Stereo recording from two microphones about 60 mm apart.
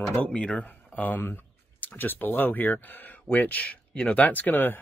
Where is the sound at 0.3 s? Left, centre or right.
Centre.